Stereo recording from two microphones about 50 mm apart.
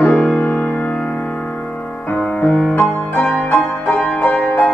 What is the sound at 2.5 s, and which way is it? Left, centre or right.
Music, centre.